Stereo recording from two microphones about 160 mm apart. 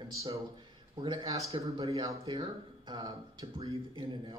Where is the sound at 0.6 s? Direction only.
25° right (ahead or behind).